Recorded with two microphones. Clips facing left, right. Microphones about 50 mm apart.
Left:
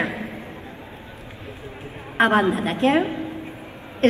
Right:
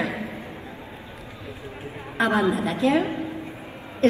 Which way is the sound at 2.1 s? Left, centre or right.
Left.